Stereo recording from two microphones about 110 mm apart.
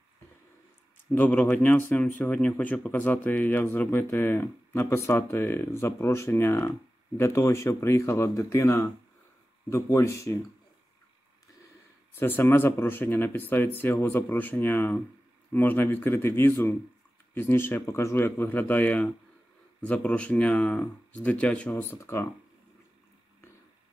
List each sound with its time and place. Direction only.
1.1 s speech: 15° left (ahead or behind)
12.2 s speech: 20° left (ahead or behind)